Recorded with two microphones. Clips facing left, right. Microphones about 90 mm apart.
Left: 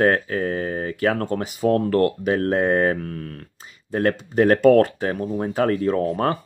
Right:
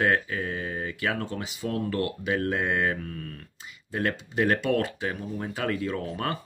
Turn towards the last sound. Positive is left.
turn(degrees=40)  # may be behind; listen again after turning